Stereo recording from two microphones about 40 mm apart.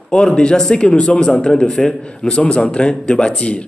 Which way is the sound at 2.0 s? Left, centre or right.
Left.